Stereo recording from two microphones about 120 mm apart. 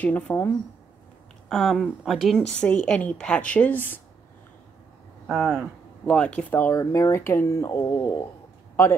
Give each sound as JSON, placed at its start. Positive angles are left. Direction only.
{"t": 0.0, "sound": "a woman's voice", "side_deg": 15}
{"t": 1.5, "sound": "a woman's voice", "side_deg": 0}
{"t": 5.2, "sound": "speech", "side_deg": -5}
{"t": 6.0, "sound": "a woman's voice", "side_deg": 10}
{"t": 6.7, "sound": "speech", "side_deg": 25}